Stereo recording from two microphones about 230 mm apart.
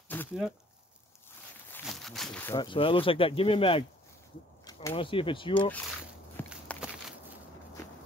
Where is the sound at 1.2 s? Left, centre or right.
Centre.